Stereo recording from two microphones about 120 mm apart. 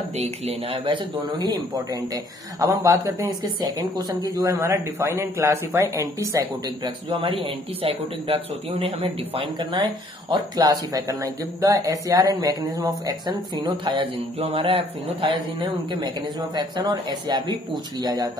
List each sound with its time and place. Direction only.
0.2 s speech: 55° right (ahead or behind)
2.6 s speech: 30° right (ahead or behind)
7.8 s speech: 55° right (ahead or behind)
9.6 s speech: 35° right (ahead or behind)
13.3 s speech: 40° right (ahead or behind)
16.5 s speech: 35° right (ahead or behind)